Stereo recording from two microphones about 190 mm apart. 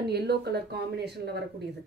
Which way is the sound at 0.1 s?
60° right (ahead or behind).